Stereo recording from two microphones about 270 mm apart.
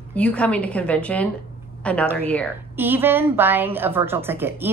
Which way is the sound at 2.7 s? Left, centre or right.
Centre.